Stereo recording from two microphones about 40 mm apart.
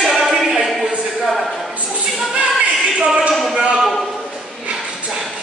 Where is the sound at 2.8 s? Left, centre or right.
Centre.